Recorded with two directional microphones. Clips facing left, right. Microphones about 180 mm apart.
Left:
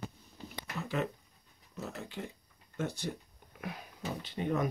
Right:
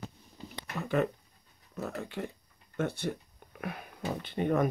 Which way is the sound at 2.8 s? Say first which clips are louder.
Right 4 dB; 60° right (ahead or behind).